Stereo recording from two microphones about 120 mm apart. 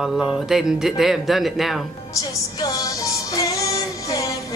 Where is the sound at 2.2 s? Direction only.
30° left (ahead or behind).